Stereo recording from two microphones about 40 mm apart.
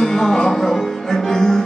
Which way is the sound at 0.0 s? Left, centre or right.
Centre.